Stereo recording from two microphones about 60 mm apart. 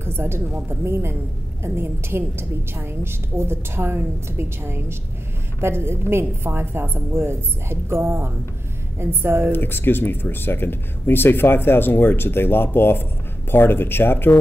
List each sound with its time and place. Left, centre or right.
0.0 s a woman's voice: right
9.5 s speech: left